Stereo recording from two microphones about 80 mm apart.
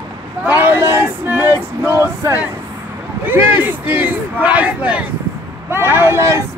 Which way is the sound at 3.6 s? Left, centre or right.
Centre.